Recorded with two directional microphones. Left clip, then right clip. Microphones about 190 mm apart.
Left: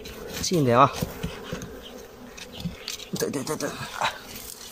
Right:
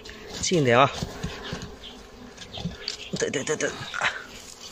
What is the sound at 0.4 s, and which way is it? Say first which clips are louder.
Speech: even; centre (ahead or behind).